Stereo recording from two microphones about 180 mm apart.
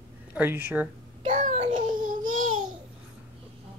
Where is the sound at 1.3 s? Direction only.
40° right (ahead or behind).